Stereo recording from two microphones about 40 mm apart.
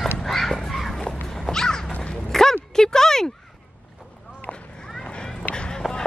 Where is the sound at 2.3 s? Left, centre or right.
Centre.